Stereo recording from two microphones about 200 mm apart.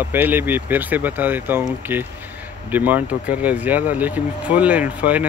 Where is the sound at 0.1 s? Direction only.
10° right (ahead or behind).